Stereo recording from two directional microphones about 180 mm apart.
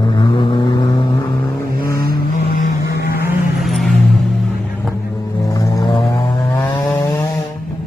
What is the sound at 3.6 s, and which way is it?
Vehicle, centre (ahead or behind).